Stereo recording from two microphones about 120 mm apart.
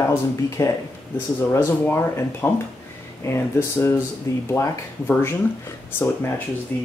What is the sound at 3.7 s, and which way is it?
Speech, 20° left (ahead or behind).